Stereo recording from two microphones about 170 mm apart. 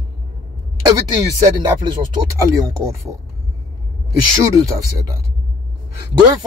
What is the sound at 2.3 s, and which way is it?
Speech, 15° right (ahead or behind).